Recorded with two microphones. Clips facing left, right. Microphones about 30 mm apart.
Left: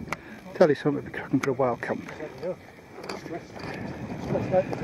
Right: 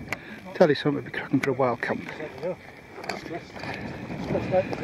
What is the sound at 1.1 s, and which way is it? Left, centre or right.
Speech, right.